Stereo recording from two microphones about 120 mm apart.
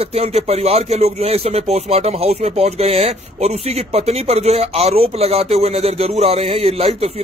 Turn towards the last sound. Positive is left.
turn(degrees=-55)  # may be behind; listen again after turning